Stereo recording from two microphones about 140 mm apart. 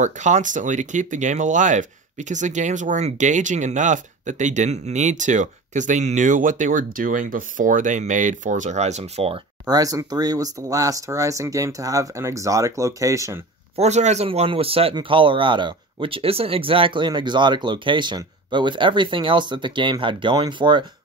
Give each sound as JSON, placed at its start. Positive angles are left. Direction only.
{"t": 0.0, "sound": "speech", "side_deg": -60}
{"t": 9.7, "sound": "speech", "side_deg": -25}
{"t": 13.7, "sound": "speech", "side_deg": -55}